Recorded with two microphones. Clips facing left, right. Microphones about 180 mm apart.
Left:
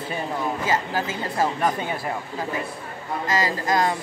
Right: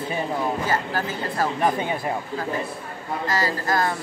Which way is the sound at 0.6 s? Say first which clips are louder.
Left 1 dB; 15° left (ahead or behind).